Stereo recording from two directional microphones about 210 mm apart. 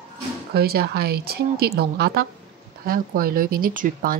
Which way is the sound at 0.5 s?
45° right (ahead or behind).